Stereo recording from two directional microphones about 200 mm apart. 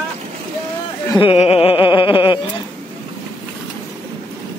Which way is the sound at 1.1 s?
25° left (ahead or behind).